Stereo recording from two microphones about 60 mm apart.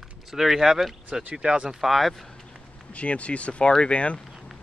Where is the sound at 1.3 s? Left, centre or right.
Centre.